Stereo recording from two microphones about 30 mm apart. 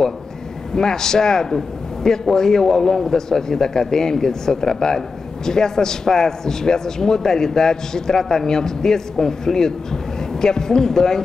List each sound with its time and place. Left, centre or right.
0.7 s a man's voice: centre